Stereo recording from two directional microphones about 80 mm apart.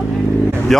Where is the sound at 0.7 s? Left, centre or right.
Centre.